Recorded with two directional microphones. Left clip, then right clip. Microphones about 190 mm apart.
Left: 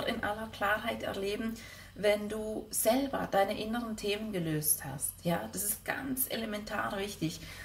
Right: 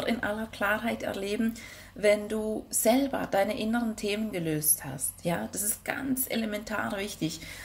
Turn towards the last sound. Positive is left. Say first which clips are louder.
# right 3 dB
turn(degrees=-35)  # may be behind; listen again after turning